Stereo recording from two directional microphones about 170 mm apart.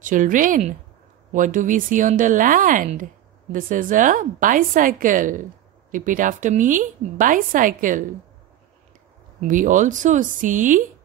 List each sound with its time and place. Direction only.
0.0 s a woman's voice: 50° right (ahead or behind)
9.4 s a woman's voice: 50° right (ahead or behind)